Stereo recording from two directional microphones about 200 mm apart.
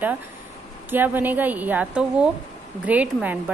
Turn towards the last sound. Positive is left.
turn(degrees=-5)  # may be behind; listen again after turning